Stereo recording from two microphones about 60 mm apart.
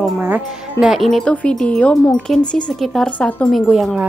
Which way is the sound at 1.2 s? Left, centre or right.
Centre.